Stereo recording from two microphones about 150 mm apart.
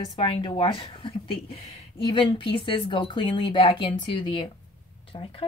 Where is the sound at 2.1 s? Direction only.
35° left (ahead or behind).